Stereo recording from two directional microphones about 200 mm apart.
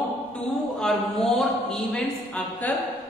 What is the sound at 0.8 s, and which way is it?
A woman's voice, centre (ahead or behind).